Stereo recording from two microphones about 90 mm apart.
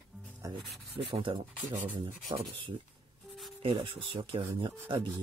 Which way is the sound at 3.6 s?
75° right (ahead or behind).